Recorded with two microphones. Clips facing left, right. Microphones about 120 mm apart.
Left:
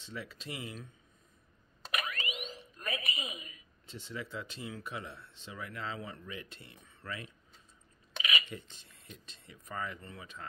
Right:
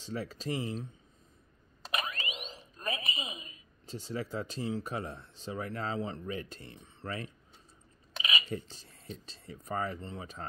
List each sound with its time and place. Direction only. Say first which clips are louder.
0.0 s speech: right 7 dB; 35° right (ahead or behind)
1.9 s speech: right 1 dB; 25° right (ahead or behind)